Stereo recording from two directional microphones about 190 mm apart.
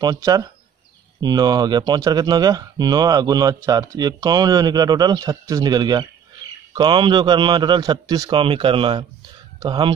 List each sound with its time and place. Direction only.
0.0 s speech: 20° right (ahead or behind)